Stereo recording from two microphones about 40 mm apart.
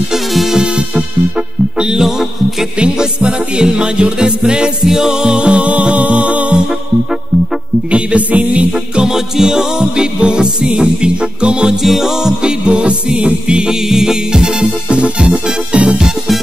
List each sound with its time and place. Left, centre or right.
0.1 s music: centre
0.6 s music: right
1.9 s music: centre
2.8 s music: right
7.9 s music: right
8.7 s music: centre
11.7 s music: centre; by 16.0 s right